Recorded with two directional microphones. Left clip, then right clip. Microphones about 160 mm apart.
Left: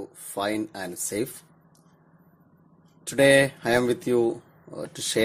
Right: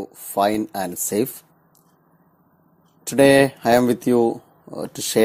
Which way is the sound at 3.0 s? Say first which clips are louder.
Right 4 dB; 40° right (ahead or behind).